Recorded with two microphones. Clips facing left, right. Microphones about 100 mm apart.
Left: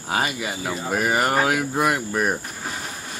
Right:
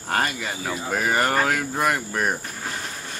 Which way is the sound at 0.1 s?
10° left (ahead or behind).